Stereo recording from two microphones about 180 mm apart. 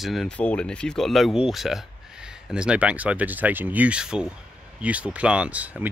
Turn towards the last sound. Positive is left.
turn(degrees=-10)  # may be behind; listen again after turning